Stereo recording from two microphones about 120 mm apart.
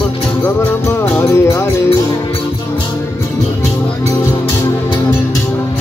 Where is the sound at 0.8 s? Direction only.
20° left (ahead or behind).